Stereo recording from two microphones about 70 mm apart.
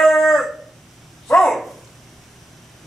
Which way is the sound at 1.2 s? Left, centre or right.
Centre.